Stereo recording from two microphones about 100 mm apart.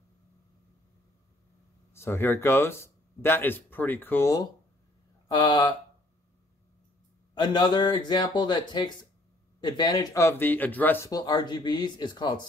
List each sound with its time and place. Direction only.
2.0 s speech: 25° left (ahead or behind)
5.3 s speech: 45° left (ahead or behind)
7.3 s speech: 50° left (ahead or behind)
10.1 s speech: 25° left (ahead or behind)
11.1 s speech: 40° left (ahead or behind)